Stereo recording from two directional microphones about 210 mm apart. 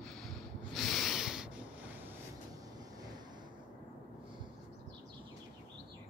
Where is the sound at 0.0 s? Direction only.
Centre (ahead or behind).